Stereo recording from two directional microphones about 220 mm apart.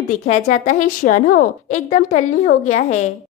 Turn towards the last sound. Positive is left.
turn(degrees=30)  # may be behind; listen again after turning